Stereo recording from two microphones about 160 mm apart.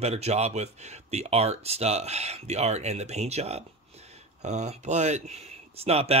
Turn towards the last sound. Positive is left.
turn(degrees=-40)  # may be behind; listen again after turning